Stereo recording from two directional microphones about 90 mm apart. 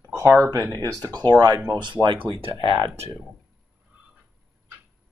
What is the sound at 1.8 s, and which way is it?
Speech, 65° right (ahead or behind).